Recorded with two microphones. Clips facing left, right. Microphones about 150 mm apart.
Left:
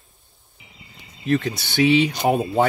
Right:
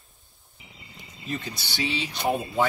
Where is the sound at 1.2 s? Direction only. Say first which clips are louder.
Left 12 dB; 70° left (ahead or behind).